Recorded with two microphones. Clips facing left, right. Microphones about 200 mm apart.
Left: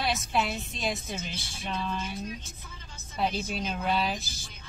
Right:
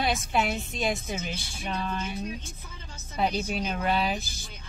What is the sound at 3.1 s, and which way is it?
Speech, centre (ahead or behind).